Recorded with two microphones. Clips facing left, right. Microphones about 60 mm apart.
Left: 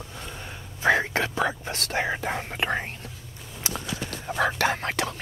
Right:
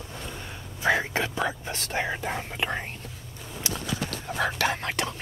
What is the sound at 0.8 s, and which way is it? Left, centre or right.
Whispering, left.